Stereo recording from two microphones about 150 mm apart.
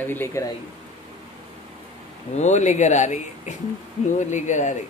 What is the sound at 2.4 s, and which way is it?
Speech, 50° left (ahead or behind).